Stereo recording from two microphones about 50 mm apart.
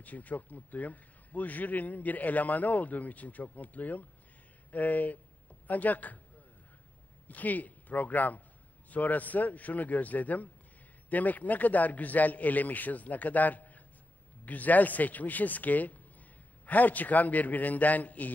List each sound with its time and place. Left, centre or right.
0.0 s speech: left
7.2 s speech: left